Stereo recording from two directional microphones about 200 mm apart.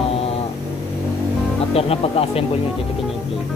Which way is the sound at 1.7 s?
30° left (ahead or behind).